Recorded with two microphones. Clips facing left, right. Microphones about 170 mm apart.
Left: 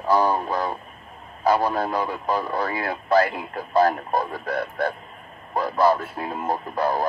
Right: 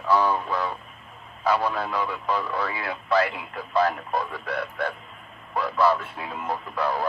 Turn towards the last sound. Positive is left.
turn(degrees=40)  # may be behind; listen again after turning